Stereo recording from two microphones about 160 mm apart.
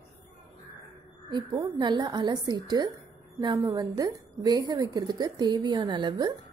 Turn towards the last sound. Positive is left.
turn(degrees=-30)  # may be behind; listen again after turning